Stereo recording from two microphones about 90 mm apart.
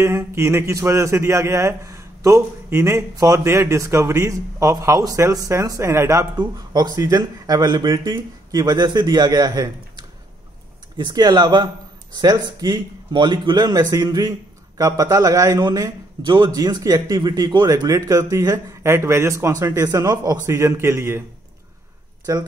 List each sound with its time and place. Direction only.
0.0 s speech: 30° right (ahead or behind)
6.3 s speech: 50° right (ahead or behind)
11.0 s a man's voice: 60° right (ahead or behind); by 15.6 s 40° right (ahead or behind)
16.3 s a man's voice: 65° right (ahead or behind)
16.5 s speech: 45° right (ahead or behind)
17.6 s a man's voice: 40° right (ahead or behind)